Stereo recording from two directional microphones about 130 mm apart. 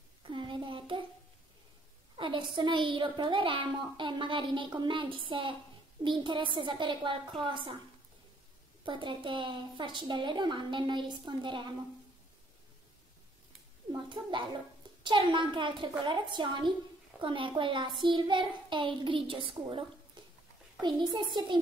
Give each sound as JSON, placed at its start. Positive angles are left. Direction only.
{"t": 0.2, "sound": "a sound", "side_deg": -40}
{"t": 2.1, "sound": "a woman's voice", "side_deg": -40}
{"t": 8.8, "sound": "a woman's voice", "side_deg": -40}
{"t": 14.0, "sound": "a woman's voice", "side_deg": -35}
{"t": 20.8, "sound": "a woman's voice", "side_deg": -35}